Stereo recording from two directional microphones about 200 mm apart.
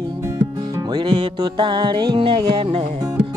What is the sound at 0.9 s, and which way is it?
Music, 20° right (ahead or behind).